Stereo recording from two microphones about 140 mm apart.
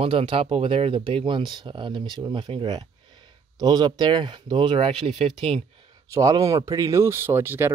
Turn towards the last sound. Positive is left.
turn(degrees=-15)  # may be behind; listen again after turning